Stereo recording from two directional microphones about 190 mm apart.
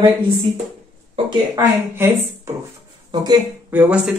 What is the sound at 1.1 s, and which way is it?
Speech, 25° right (ahead or behind).